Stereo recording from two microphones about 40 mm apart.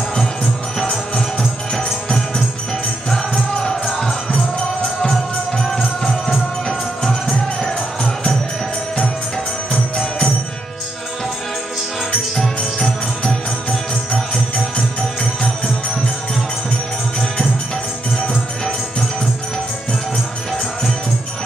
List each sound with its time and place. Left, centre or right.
2.0 s music: centre
7.0 s music: centre
7.6 s music: centre
9.7 s music: centre
12.4 s music: centre